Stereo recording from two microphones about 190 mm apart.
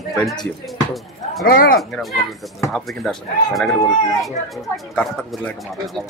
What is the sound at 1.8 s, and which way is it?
A man's voice, centre (ahead or behind).